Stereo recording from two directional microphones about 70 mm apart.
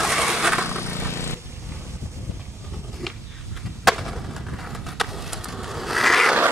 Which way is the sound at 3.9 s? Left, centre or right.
Centre.